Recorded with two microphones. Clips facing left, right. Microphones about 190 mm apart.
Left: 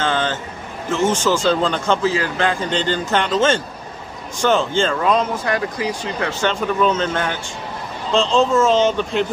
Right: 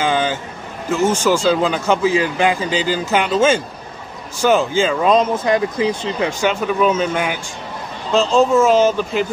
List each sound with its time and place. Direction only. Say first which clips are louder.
0.0 s a sound: right 2 dB; 10° right (ahead or behind)
0.8 s speech: right 2 dB; 10° right (ahead or behind)
5.0 s speech: right 4 dB; 20° right (ahead or behind); by 9.3 s 5° right (ahead or behind)